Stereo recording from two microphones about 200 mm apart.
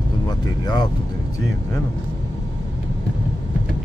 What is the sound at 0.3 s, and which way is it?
Vehicle, 20° left (ahead or behind).